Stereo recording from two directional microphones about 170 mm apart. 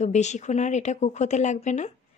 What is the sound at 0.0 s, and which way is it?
Speech, 45° left (ahead or behind).